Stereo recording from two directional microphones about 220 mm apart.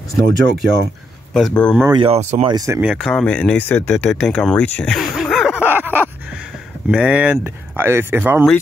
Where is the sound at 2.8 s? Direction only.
Centre (ahead or behind).